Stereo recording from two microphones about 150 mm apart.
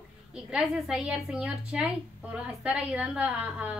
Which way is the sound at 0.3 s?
5° right (ahead or behind).